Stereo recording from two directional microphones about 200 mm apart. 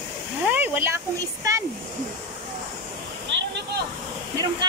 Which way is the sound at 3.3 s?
65° right (ahead or behind).